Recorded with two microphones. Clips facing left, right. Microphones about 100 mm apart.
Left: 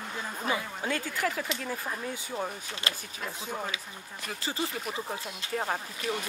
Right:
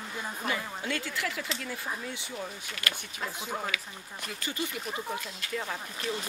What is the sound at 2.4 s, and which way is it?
Speech, 30° left (ahead or behind).